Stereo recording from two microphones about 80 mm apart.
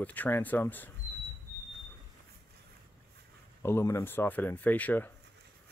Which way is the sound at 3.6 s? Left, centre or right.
Left.